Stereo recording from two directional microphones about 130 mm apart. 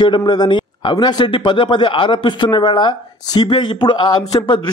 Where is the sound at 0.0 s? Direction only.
35° left (ahead or behind).